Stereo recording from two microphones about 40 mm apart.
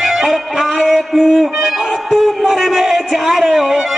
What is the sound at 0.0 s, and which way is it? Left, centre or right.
Music, centre.